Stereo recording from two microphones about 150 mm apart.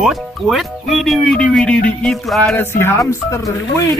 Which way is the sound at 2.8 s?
20° left (ahead or behind).